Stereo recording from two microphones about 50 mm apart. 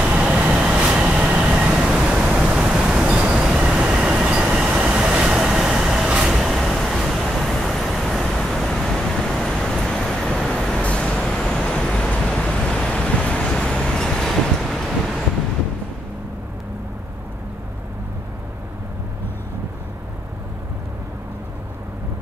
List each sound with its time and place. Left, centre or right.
0.0 s vehicle: right; by 10.8 s centre
10.8 s vehicle: left
11.2 s vehicle: centre
14.7 s vehicle: centre